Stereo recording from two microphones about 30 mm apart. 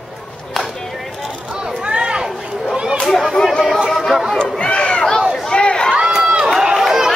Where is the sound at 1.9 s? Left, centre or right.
Right.